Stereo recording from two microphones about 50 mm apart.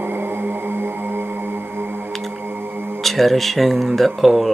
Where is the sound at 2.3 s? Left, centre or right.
Right.